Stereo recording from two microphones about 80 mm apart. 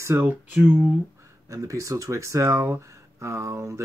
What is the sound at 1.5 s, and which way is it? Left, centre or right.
Speech, right.